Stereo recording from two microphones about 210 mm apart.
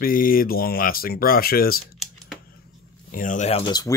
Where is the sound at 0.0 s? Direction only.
45° left (ahead or behind).